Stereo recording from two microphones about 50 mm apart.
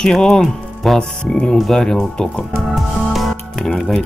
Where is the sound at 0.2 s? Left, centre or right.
Centre.